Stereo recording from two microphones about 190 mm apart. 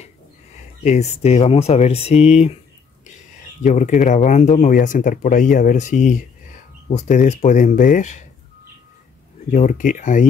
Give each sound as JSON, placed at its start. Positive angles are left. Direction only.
{"t": 0.8, "sound": "speech", "side_deg": 35}
{"t": 3.6, "sound": "speech", "side_deg": 40}
{"t": 9.5, "sound": "speech", "side_deg": 45}